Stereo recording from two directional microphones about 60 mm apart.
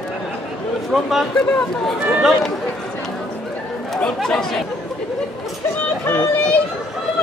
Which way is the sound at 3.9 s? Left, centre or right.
Centre.